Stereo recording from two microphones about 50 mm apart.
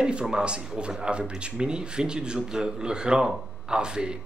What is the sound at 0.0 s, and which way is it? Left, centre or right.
Speech, centre.